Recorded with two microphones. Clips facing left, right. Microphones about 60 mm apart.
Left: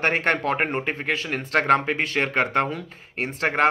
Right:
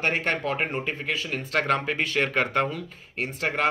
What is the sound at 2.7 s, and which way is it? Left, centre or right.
Speech, left.